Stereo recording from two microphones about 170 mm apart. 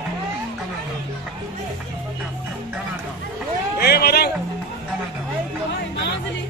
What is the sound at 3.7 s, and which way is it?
Speech, 70° left (ahead or behind).